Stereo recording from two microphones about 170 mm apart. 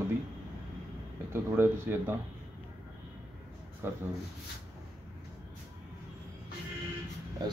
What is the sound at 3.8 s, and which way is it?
Speech, 15° right (ahead or behind).